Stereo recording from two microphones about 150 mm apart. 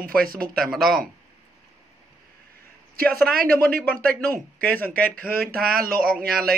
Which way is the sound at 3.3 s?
85° right.